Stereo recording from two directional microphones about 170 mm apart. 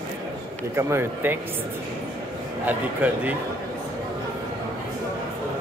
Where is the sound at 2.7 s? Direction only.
10° right (ahead or behind).